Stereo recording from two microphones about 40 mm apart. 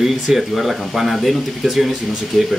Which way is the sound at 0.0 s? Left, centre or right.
Centre.